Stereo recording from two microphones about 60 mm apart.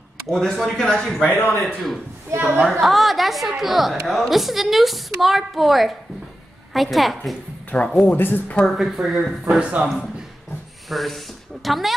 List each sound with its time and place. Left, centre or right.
0.3 s speech: centre
1.2 s speech: left
1.7 s speech: centre
8.0 s speech: left
8.6 s speech: centre
9.6 s a man's voice: centre
10.9 s speech: centre